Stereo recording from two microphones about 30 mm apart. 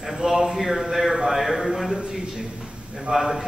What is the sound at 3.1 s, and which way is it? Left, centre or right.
Speech, centre.